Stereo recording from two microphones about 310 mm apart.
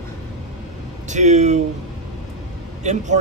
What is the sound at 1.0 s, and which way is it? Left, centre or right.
Speech, right.